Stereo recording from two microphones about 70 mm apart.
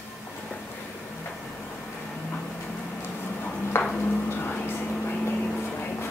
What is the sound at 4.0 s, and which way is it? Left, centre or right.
Vehicle, left.